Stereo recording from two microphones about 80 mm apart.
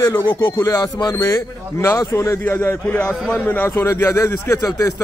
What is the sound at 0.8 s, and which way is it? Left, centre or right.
Speech, left.